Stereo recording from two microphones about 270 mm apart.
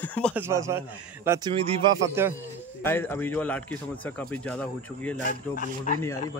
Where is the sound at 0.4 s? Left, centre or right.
Centre.